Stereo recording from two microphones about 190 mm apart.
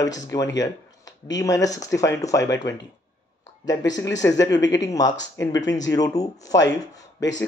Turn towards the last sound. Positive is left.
turn(degrees=20)  # may be behind; listen again after turning